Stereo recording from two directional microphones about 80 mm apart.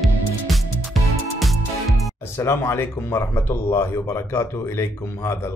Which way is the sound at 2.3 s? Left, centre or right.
Left.